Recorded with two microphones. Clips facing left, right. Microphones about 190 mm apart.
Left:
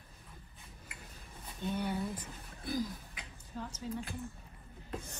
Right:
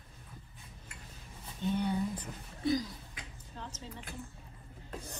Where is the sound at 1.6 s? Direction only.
10° left (ahead or behind).